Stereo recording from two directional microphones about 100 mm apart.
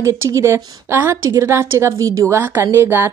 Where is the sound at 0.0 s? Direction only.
30° right (ahead or behind).